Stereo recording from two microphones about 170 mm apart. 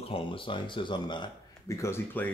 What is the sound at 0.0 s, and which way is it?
Speech, 30° left (ahead or behind).